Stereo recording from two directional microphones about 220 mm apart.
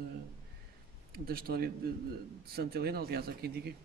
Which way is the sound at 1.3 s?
45° right (ahead or behind).